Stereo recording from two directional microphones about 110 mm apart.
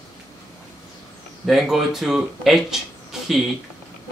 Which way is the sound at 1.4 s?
Centre (ahead or behind).